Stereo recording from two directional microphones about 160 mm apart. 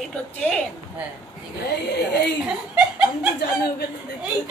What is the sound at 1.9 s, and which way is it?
Speech, 90° left.